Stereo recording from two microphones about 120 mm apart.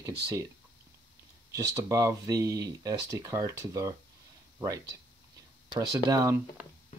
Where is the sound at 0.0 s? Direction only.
30° right (ahead or behind).